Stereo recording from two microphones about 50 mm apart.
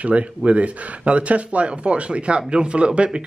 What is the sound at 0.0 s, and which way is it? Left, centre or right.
Speech, right.